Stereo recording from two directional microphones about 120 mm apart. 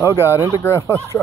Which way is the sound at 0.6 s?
20° left (ahead or behind).